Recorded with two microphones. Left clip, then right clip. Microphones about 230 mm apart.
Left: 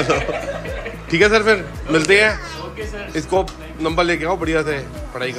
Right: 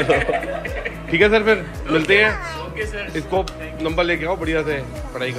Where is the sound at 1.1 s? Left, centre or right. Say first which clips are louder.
Left 1 dB; centre.